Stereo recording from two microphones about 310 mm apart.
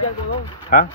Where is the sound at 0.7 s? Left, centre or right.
Left.